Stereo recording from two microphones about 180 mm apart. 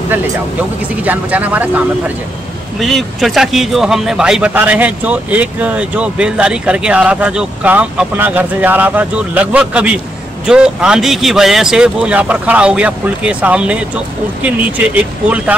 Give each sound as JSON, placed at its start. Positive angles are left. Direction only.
{"t": 1.0, "sound": "a man's voice", "side_deg": -10}